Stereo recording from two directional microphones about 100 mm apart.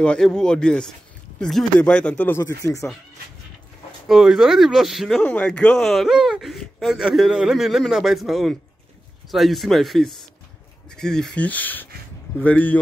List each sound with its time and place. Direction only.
0.0 s speech: 10° left (ahead or behind)
2.4 s speech: 35° left (ahead or behind)
4.1 s speech: 5° right (ahead or behind)
5.2 s speech: 10° left (ahead or behind)